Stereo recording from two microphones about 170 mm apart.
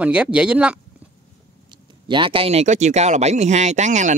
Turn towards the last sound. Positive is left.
turn(degrees=-45)  # may be behind; listen again after turning